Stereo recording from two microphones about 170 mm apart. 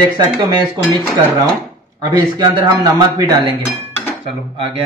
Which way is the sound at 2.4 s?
25° right (ahead or behind).